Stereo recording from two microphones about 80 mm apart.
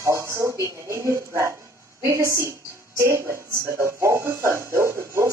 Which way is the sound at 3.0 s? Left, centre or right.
Right.